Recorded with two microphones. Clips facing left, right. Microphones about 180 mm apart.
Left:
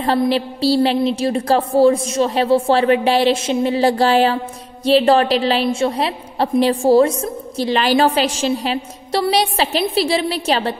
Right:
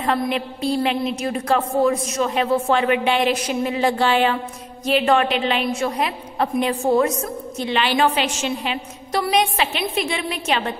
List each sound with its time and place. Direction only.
0.0 s a woman's voice: 30° left (ahead or behind)